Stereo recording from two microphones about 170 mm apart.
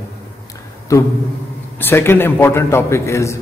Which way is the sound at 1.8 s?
10° left (ahead or behind).